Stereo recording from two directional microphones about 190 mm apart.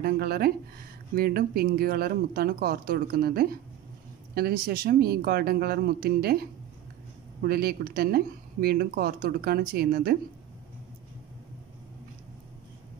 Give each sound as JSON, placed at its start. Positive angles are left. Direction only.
{"t": 0.0, "sound": "speech", "side_deg": -55}